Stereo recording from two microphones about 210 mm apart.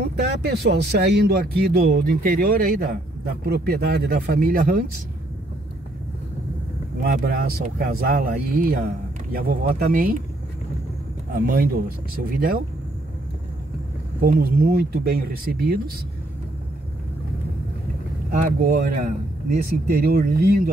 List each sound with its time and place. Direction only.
0.0 s speech: 50° right (ahead or behind)
7.0 s speech: 45° right (ahead or behind)
11.3 s speech: 45° right (ahead or behind)
14.2 s speech: 45° right (ahead or behind)
18.4 s speech: 40° right (ahead or behind)